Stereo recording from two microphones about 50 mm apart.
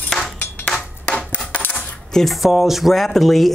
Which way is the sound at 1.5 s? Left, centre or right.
Left.